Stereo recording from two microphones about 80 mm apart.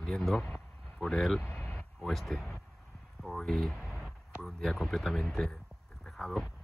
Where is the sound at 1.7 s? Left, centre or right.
Centre.